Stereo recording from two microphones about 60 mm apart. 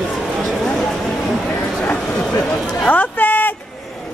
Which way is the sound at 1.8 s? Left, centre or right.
Left.